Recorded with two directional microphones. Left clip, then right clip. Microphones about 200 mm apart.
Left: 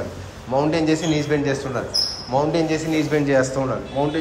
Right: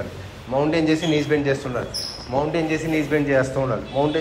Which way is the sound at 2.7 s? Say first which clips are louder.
Left 1 dB; 10° left (ahead or behind).